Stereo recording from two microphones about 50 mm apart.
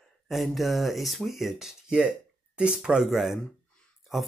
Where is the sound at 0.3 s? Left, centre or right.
Centre.